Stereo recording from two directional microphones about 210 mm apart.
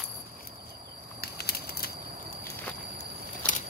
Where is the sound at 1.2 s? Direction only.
45° left (ahead or behind).